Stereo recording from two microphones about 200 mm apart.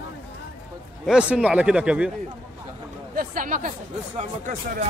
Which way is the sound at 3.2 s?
45° right (ahead or behind).